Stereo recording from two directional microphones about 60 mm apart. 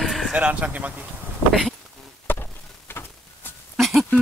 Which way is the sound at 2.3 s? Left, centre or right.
Left.